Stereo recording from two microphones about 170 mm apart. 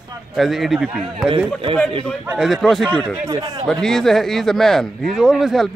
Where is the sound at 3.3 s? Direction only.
20° right (ahead or behind).